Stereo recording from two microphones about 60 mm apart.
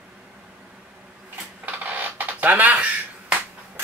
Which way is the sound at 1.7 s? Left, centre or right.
Right.